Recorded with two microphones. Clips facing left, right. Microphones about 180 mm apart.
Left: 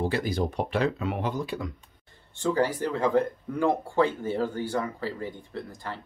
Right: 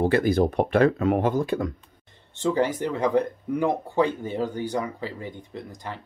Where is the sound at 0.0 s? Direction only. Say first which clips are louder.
Right 7 dB; 55° right (ahead or behind).